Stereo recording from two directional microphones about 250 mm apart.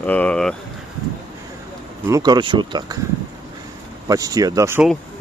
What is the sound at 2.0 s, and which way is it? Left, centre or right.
Speech, centre.